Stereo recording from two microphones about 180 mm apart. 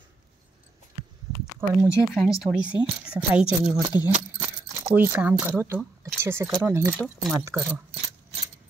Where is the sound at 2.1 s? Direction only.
Centre (ahead or behind); by 7.6 s 15° right (ahead or behind).